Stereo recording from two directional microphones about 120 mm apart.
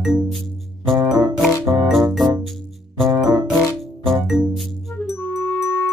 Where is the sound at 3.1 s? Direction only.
35° right (ahead or behind).